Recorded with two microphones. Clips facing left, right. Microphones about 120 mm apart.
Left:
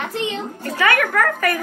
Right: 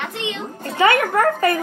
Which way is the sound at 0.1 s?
35° left (ahead or behind).